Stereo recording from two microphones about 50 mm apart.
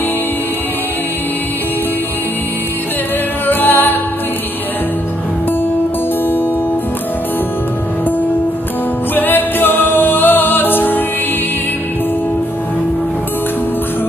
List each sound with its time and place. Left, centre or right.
3.4 s music: left
9.1 s music: left